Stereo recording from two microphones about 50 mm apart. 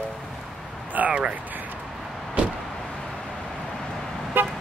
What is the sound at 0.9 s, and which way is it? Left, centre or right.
Speech, right.